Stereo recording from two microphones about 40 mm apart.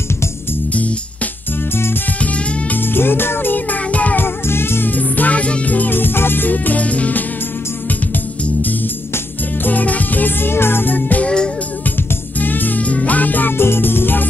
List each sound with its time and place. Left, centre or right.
0.7 s music: left
2.8 s music: left
4.2 s music: left
4.8 s music: left
5.9 s music: left
9.6 s music: left
10.4 s music: left
10.9 s music: left
11.2 s music: centre
12.4 s music: left
12.8 s music: left
13.6 s music: left